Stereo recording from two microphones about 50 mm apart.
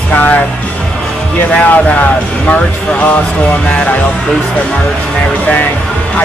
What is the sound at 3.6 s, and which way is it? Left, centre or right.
Speech, left.